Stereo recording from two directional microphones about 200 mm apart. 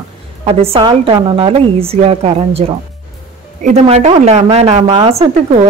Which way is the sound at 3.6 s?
35° right (ahead or behind).